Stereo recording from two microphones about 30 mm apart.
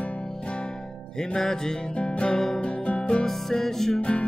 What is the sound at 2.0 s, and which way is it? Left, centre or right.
Music, left.